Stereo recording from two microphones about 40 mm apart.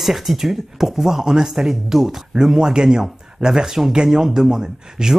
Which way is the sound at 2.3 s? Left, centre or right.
Centre.